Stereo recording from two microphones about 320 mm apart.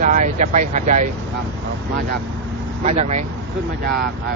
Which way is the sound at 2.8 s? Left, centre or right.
Right.